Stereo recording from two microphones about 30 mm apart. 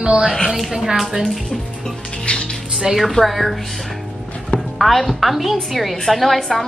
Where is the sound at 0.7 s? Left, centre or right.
Centre.